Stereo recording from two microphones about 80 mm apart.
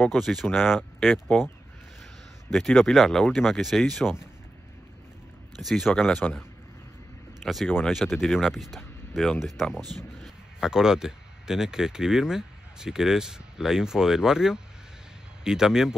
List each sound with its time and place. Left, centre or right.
0.0 s speech: centre
2.5 s speech: centre
5.6 s speech: centre
7.4 s speech: centre
9.8 s speech: right
10.2 s speech: centre